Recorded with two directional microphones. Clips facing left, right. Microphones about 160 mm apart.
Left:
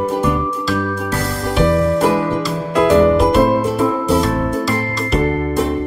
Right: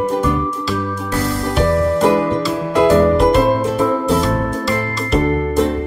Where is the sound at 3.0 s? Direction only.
Centre (ahead or behind).